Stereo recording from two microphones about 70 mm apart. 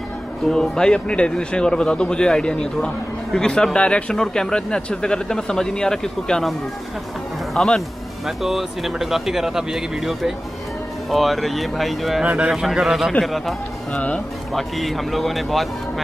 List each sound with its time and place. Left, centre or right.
0.5 s a man's voice: centre
7.5 s a man's voice: centre
8.3 s speech: centre
12.2 s speech: centre
12.6 s speech: centre
13.9 s a man's voice: centre
14.5 s speech: centre